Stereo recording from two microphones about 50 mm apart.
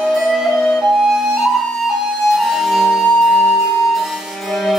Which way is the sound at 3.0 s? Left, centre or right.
Centre.